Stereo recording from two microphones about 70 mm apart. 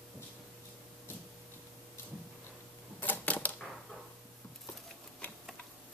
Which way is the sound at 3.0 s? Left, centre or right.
Left.